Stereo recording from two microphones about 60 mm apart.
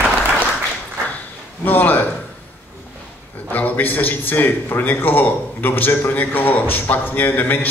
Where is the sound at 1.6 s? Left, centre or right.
Left.